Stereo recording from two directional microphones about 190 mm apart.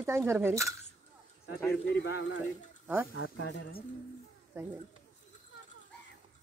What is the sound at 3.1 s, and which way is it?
Speech, 80° left.